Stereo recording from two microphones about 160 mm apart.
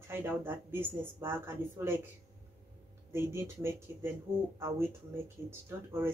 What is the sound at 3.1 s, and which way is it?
Speech, 15° right (ahead or behind).